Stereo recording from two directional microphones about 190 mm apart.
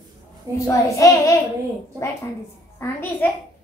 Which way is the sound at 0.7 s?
15° left (ahead or behind).